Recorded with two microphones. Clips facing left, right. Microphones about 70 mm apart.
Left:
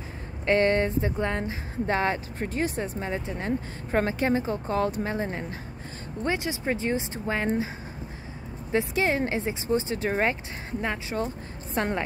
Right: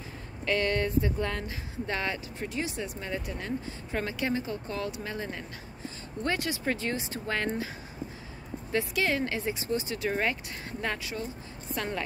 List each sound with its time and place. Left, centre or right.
0.5 s speech: left
8.7 s a woman's voice: left